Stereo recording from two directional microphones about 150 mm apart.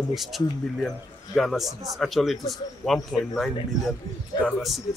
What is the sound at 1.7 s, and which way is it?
Speech, 25° right (ahead or behind).